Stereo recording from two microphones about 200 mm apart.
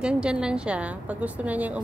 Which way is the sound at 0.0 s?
5° right (ahead or behind).